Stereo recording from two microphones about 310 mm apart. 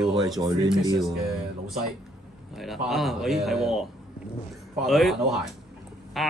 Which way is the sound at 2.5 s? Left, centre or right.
Centre.